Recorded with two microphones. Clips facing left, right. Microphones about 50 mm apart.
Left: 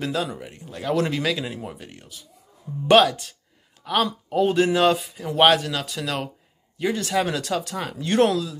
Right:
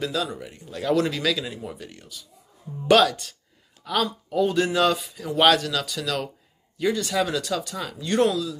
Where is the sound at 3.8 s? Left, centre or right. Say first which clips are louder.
Left 2 dB; left.